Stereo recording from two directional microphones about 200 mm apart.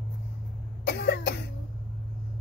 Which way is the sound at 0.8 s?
55° left (ahead or behind).